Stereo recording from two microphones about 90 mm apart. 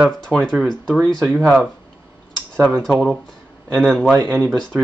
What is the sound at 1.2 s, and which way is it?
Speech, 10° right (ahead or behind).